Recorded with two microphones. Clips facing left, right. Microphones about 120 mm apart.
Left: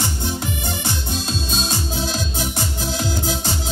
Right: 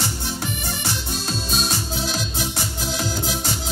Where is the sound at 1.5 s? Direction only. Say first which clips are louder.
Even; 25° left (ahead or behind).